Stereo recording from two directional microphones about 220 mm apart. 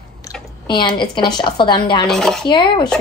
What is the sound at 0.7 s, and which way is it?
A woman's voice, 20° left (ahead or behind).